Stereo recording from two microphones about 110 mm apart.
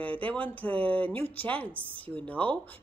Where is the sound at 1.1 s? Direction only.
60° right (ahead or behind).